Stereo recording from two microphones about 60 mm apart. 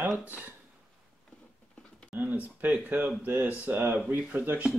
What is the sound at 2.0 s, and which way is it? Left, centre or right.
Speech, right.